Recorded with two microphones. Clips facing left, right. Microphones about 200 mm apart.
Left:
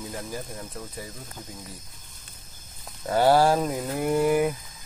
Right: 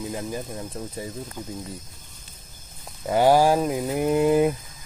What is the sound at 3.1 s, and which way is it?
Speech, 15° right (ahead or behind).